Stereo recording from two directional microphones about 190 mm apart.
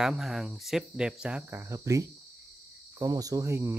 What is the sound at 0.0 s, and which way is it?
Speech, centre (ahead or behind).